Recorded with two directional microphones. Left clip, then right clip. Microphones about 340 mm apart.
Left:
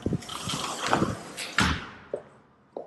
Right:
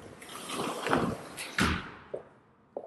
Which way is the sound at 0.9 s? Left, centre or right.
Centre.